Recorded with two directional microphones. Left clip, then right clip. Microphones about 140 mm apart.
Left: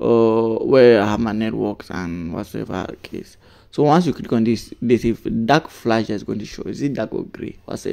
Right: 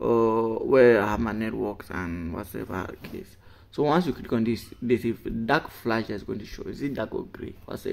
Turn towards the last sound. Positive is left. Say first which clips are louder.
# left 7 dB
turn(degrees=40)  # may be behind; listen again after turning